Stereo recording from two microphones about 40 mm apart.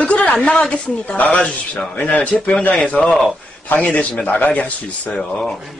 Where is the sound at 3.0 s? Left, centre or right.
Left.